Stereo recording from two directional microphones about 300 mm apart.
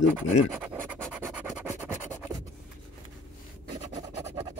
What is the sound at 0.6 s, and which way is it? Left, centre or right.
Scratch, centre.